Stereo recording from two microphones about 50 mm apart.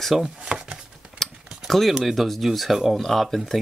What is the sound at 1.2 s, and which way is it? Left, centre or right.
Mechanisms, centre.